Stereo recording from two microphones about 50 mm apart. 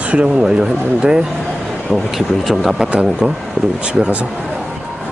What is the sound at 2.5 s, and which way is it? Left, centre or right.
Speech, centre.